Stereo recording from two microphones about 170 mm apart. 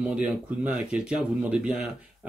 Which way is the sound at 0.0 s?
5° right (ahead or behind).